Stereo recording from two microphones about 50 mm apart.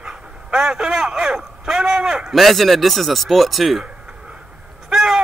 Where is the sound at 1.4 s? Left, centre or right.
Centre.